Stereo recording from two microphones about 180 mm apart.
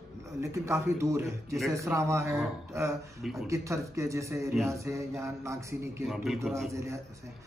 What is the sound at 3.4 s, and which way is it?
Speech, 15° right (ahead or behind).